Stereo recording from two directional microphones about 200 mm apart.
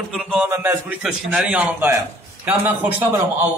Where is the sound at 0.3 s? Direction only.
5° right (ahead or behind).